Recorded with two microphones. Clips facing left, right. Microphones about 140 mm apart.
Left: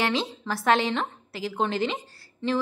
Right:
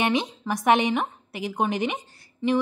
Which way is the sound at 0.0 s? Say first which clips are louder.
Right 2 dB; 20° right (ahead or behind).